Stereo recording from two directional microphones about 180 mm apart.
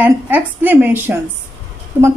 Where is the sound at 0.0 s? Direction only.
10° right (ahead or behind).